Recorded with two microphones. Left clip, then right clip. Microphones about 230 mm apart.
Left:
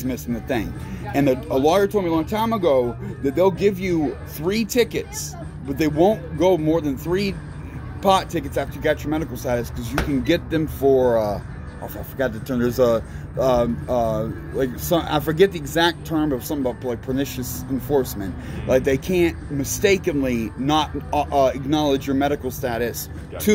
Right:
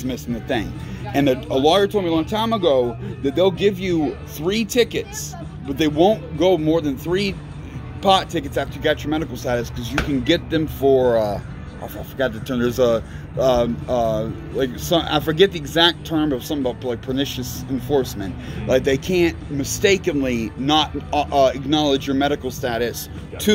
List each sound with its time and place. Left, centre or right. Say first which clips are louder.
0.0 s speech: even; centre